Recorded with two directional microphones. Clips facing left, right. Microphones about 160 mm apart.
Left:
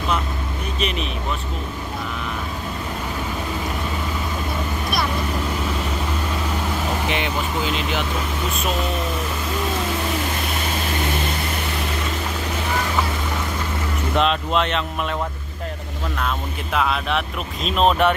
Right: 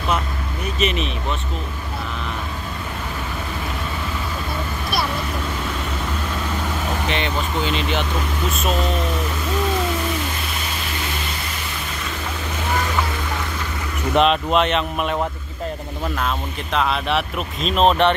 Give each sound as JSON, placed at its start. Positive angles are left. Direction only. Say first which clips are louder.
{"t": 0.7, "sound": "speech", "louder": "right 4 dB", "side_deg": 0}
{"t": 6.9, "sound": "vehicle", "louder": "right 1 dB", "side_deg": 10}
{"t": 14.1, "sound": "speech", "louder": "right 4 dB", "side_deg": -20}
{"t": 16.2, "sound": "speech", "louder": "right 1 dB", "side_deg": 0}